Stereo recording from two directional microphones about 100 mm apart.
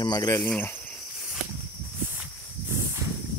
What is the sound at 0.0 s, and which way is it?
Speech, 40° left (ahead or behind).